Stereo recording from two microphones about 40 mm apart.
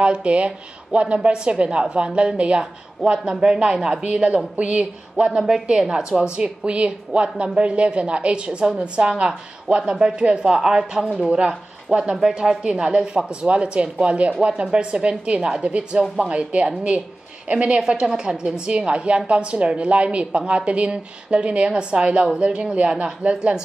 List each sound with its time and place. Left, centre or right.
0.0 s a woman's voice: right
18.7 s a woman's voice: right